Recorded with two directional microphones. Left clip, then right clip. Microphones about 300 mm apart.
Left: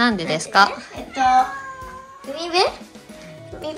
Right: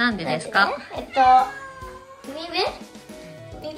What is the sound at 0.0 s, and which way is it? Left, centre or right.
Speech, centre.